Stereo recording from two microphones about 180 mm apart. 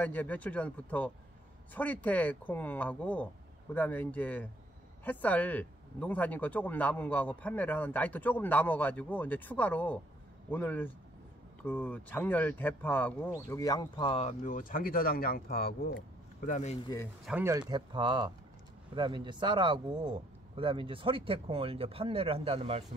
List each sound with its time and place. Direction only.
0.0 s speech: 10° left (ahead or behind); by 16.0 s 60° left (ahead or behind)
16.4 s speech: 45° left (ahead or behind)
17.3 s speech: 15° right (ahead or behind); by 22.8 s 35° right (ahead or behind)